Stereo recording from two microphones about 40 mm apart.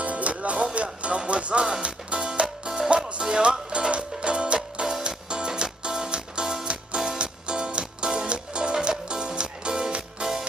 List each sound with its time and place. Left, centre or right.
0.0 s music: right
1.0 s speech: right
2.1 s music: right